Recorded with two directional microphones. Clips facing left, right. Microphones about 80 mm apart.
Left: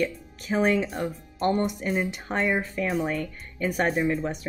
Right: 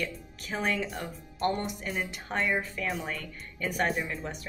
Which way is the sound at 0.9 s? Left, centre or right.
Left.